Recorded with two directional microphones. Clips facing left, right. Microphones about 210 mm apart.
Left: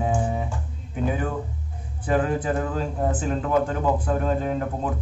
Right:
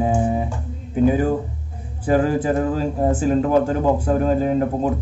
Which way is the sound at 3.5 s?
30° right (ahead or behind).